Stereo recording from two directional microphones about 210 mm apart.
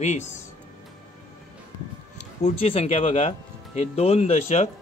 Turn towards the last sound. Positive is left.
turn(degrees=30)  # may be behind; listen again after turning